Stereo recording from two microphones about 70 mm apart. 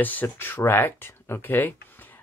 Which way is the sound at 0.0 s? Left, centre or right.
Left.